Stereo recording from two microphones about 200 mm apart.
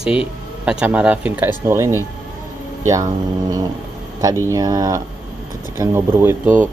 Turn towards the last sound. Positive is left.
turn(degrees=-10)  # may be behind; listen again after turning